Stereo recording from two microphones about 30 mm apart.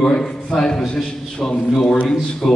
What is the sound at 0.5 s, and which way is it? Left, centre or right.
A man's voice, left.